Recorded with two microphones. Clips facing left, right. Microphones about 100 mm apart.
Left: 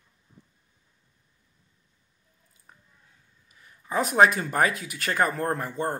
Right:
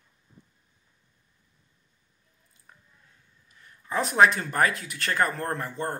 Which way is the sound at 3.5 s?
15° left (ahead or behind).